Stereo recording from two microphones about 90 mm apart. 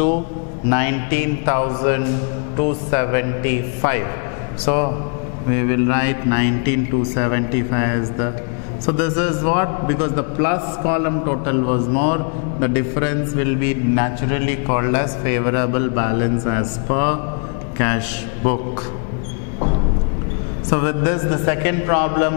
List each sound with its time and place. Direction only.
0.7 s a man's voice: 15° left (ahead or behind)
20.7 s a man's voice: 15° left (ahead or behind)